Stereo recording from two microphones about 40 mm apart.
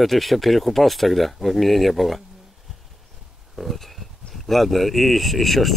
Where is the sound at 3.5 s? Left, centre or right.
Centre.